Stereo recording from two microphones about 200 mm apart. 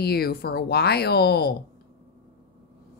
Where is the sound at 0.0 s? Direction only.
50° left (ahead or behind).